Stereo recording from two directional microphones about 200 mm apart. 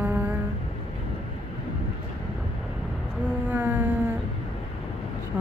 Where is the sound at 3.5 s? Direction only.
5° right (ahead or behind).